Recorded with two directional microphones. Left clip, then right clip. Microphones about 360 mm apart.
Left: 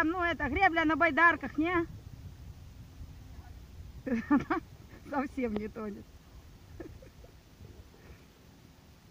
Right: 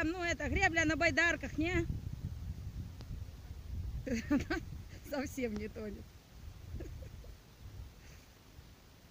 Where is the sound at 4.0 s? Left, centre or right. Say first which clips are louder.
Left 6 dB; centre.